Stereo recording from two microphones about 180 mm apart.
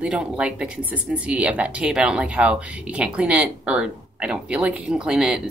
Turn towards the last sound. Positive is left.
turn(degrees=-5)  # may be behind; listen again after turning